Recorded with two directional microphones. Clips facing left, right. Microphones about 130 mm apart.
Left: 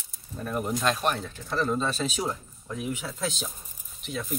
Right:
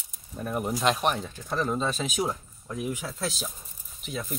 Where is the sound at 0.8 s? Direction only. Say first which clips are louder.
Right 3 dB; 20° right (ahead or behind).